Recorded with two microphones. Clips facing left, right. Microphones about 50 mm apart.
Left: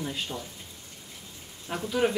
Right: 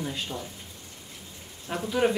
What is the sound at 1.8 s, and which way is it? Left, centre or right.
Speech, centre.